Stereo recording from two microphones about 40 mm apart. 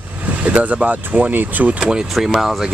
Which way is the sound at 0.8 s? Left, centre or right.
Right.